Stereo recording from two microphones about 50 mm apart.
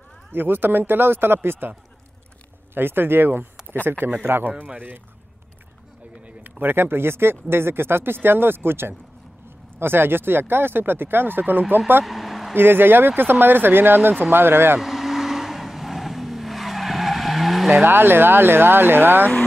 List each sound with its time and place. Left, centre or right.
0.3 s speech: right
2.7 s speech: right
4.7 s speech: right
6.4 s speech: right
12.0 s a sound: centre
12.5 s speech: right
14.8 s vehicle: centre
17.8 s speech: right